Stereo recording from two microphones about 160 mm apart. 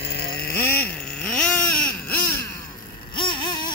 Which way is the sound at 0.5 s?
10° left (ahead or behind).